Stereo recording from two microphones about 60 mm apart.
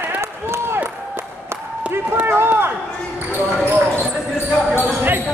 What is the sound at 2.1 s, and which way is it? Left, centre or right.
Run, right.